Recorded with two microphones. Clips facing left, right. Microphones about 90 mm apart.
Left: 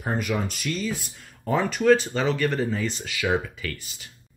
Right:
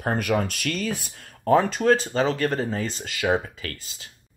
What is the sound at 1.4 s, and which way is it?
Speech, 40° right (ahead or behind).